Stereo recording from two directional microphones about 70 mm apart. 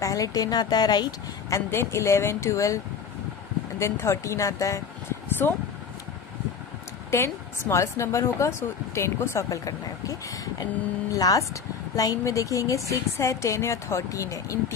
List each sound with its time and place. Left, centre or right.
0.0 s speech: left
1.5 s speech: left
3.8 s a woman's voice: left
5.4 s speech: left
7.1 s a woman's voice: left
7.8 s a woman's voice: left